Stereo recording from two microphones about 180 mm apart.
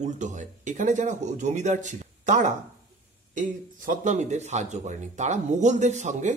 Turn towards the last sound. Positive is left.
turn(degrees=-40)  # may be behind; listen again after turning